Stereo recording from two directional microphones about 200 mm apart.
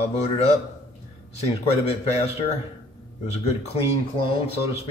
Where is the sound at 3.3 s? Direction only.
30° left (ahead or behind).